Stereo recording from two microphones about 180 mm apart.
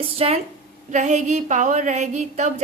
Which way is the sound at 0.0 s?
30° right (ahead or behind).